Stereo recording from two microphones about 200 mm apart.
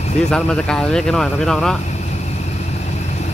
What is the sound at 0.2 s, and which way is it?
Speech, 5° left (ahead or behind).